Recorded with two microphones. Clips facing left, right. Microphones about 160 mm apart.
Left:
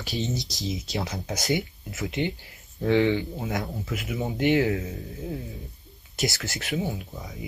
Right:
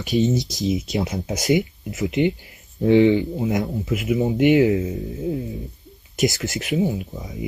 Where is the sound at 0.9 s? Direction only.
20° right (ahead or behind).